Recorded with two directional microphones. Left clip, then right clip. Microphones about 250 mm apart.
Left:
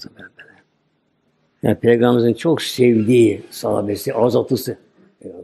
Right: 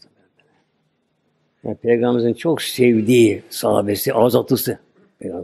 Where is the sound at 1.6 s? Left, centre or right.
Centre.